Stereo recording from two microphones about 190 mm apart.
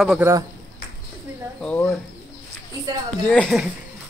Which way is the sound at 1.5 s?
5° left (ahead or behind).